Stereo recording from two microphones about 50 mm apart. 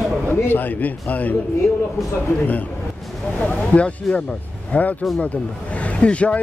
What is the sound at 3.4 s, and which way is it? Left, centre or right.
Speech, left.